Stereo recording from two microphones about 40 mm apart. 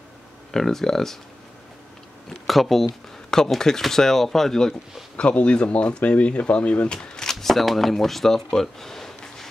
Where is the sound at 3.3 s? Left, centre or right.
Centre.